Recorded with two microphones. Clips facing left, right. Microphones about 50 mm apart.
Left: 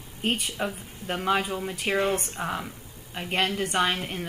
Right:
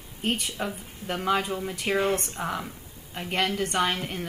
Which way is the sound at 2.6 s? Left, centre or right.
Centre.